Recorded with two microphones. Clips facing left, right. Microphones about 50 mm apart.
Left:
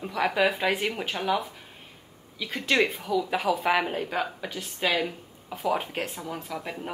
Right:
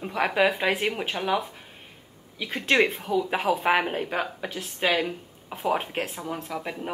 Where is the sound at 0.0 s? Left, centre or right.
Right.